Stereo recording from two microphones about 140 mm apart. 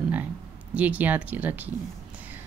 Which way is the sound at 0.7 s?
10° right (ahead or behind).